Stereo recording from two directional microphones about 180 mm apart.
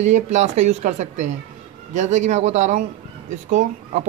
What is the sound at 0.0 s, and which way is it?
Speech, 40° right (ahead or behind).